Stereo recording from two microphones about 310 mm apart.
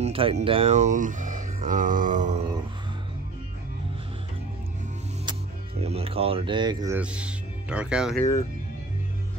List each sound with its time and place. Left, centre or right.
0.0 s speech: centre
5.8 s speech: centre